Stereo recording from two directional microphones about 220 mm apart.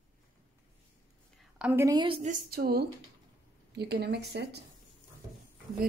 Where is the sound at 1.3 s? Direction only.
5° right (ahead or behind); by 4.6 s 50° right (ahead or behind).